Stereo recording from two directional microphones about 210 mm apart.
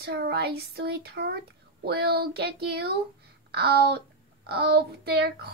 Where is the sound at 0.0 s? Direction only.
50° right (ahead or behind).